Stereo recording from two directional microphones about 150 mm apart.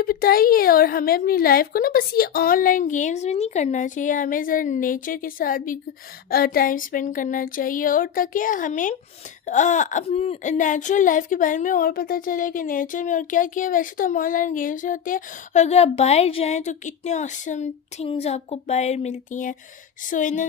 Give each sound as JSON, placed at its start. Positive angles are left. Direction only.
{"t": 0.0, "sound": "a woman's voice", "side_deg": 80}